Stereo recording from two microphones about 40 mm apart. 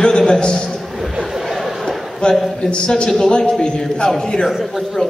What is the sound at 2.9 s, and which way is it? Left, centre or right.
A man's voice, left.